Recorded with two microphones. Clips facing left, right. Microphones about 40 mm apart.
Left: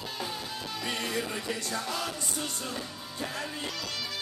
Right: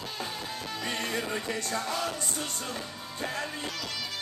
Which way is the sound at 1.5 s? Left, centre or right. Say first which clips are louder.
Even; right.